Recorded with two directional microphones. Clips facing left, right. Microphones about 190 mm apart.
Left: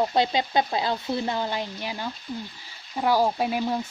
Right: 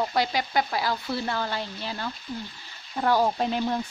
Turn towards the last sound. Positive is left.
turn(degrees=10)  # may be behind; listen again after turning